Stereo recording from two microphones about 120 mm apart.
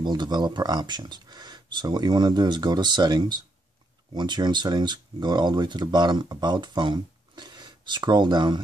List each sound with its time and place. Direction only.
0.0 s speech: 35° right (ahead or behind)